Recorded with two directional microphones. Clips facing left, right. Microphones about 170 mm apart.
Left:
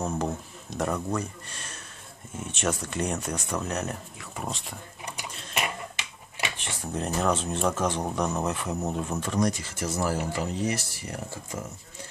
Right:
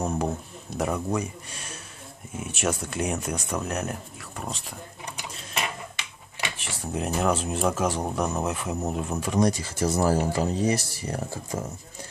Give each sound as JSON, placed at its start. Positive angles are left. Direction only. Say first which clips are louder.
{"t": 0.7, "sound": "speech", "louder": "right 2 dB", "side_deg": -5}
{"t": 6.6, "sound": "speech", "louder": "right 3 dB", "side_deg": -5}
{"t": 9.4, "sound": "speech", "louder": "right 5 dB", "side_deg": -35}